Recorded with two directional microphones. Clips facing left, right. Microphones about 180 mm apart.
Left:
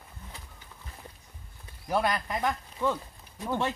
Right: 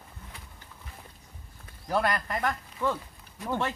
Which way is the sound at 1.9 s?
15° left (ahead or behind).